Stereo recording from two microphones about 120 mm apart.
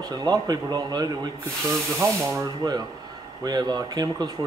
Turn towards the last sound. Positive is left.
turn(degrees=-30)  # may be behind; listen again after turning